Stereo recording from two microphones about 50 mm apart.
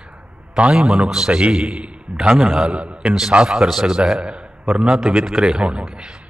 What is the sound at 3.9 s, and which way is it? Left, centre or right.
A man's voice, centre.